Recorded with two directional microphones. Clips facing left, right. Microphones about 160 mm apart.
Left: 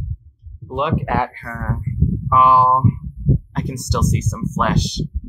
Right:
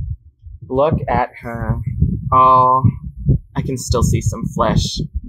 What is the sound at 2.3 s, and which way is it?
Speech, 25° right (ahead or behind).